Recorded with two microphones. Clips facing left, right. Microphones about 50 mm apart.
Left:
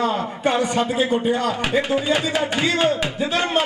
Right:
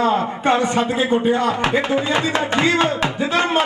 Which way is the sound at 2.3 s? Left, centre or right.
Right.